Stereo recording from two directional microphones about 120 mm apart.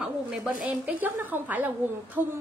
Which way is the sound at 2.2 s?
20° right (ahead or behind).